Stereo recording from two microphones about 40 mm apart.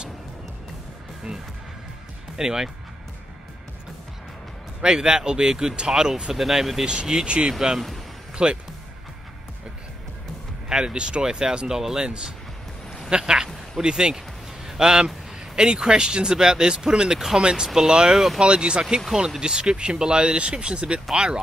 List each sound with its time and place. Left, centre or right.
2.3 s speech: centre
4.8 s speech: centre
10.7 s speech: right
13.1 s speech: right